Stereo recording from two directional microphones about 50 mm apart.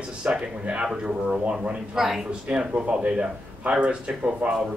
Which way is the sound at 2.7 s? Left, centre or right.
Right.